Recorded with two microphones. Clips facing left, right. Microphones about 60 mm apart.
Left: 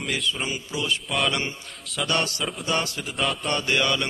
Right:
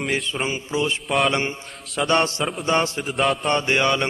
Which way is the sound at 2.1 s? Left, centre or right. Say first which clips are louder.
Right 6 dB; right.